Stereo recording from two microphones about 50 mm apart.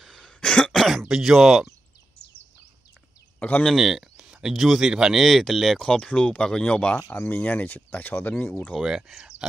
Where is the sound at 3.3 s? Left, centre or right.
Left.